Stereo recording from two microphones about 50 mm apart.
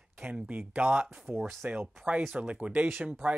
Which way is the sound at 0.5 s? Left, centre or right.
Right.